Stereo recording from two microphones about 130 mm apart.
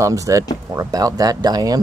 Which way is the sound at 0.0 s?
25° right (ahead or behind).